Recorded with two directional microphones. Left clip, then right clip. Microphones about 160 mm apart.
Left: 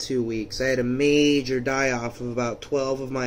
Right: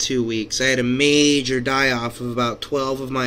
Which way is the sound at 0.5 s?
10° right (ahead or behind).